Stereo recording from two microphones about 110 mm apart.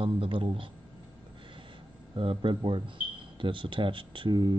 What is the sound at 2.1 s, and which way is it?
Speech, 50° right (ahead or behind).